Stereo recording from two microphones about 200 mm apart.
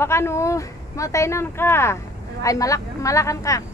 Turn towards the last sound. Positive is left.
turn(degrees=15)  # may be behind; listen again after turning